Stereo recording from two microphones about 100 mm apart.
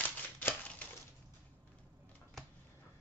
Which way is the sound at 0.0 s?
15° left (ahead or behind).